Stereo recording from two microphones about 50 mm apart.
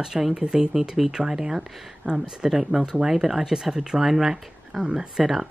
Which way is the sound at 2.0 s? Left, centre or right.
Right.